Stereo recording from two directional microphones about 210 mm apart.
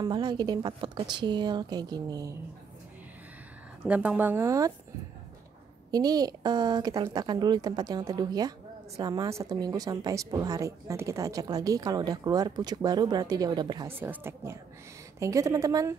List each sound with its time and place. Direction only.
0.0 s speech: 20° right (ahead or behind)
3.8 s speech: 5° right (ahead or behind)
5.9 s speech: 20° right (ahead or behind)